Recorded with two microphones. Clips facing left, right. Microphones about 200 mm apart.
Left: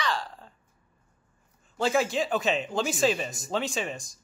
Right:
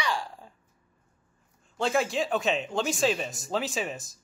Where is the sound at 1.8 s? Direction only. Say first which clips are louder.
Left 1 dB; centre (ahead or behind).